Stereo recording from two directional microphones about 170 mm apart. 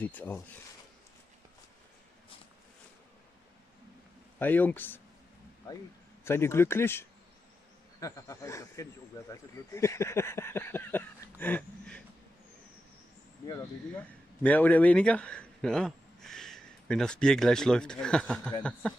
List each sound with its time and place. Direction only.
0.0 s speech: 10° left (ahead or behind)
4.4 s speech: 10° left (ahead or behind)
6.2 s speech: 15° left (ahead or behind)
13.9 s speech: 10° left (ahead or behind)